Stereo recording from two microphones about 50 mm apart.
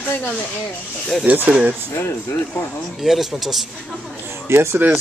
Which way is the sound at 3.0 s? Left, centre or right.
Centre.